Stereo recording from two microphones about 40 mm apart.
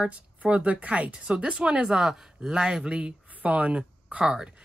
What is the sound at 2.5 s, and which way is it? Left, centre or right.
Speech, centre.